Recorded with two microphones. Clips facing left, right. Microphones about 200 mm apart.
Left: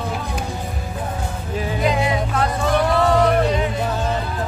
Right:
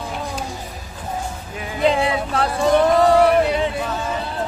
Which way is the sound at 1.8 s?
30° right (ahead or behind).